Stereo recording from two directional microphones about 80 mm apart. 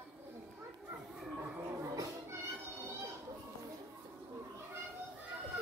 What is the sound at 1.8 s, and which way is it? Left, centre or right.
Music, right.